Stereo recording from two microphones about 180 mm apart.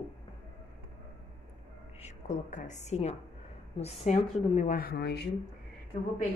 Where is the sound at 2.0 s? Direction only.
40° left (ahead or behind).